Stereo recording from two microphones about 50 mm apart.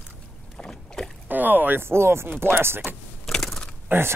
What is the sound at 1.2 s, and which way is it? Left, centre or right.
Speech, right.